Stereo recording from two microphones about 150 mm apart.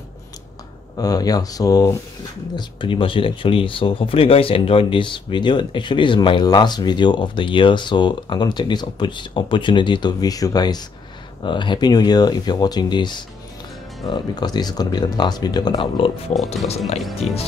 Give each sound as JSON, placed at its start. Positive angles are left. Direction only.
{"t": 0.9, "sound": "speech", "side_deg": 25}
{"t": 17.2, "sound": "speech", "side_deg": 45}